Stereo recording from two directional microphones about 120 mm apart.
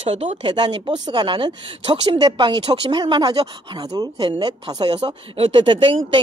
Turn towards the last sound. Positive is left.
turn(degrees=-45)  # may be behind; listen again after turning